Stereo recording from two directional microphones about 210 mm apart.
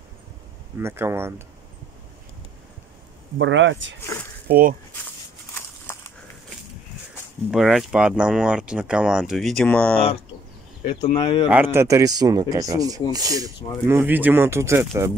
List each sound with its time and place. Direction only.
0.7 s speech: 10° right (ahead or behind)
3.3 s speech: 60° right (ahead or behind)
4.0 s a sound: 10° left (ahead or behind)
4.5 s speech: 45° right (ahead or behind)
5.5 s a sound: 10° left (ahead or behind)
7.5 s speech: 5° right (ahead or behind)
11.1 s speech: 20° left (ahead or behind)
11.4 s speech: 10° right (ahead or behind)